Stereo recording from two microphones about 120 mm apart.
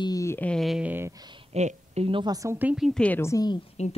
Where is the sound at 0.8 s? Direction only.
15° right (ahead or behind).